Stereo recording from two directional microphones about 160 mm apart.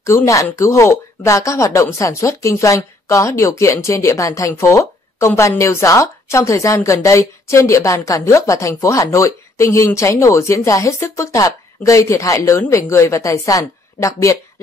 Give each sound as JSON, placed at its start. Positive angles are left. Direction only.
{"t": 0.0, "sound": "speech", "side_deg": 20}